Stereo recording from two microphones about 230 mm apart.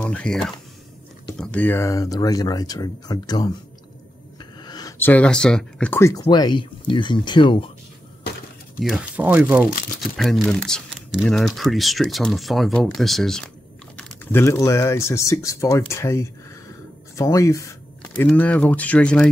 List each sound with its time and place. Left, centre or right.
0.0 s speech: centre
4.6 s speech: centre
8.8 s speech: centre